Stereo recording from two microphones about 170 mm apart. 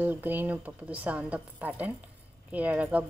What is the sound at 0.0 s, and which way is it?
A woman's voice, 10° right (ahead or behind).